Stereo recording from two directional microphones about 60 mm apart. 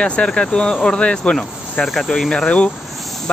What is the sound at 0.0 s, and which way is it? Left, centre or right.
Speech, centre.